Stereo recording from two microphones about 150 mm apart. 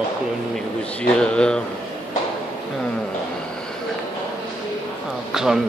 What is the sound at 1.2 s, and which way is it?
Speech, 5° left (ahead or behind).